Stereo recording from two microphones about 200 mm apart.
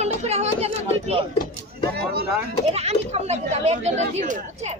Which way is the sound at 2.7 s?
30° right (ahead or behind).